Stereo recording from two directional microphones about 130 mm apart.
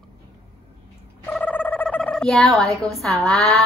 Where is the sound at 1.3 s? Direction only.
10° left (ahead or behind).